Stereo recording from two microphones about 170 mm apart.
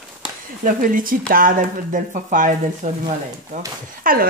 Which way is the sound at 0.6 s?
55° right (ahead or behind).